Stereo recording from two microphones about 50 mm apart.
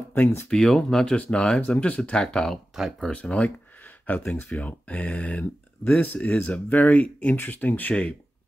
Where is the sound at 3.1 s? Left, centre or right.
Left.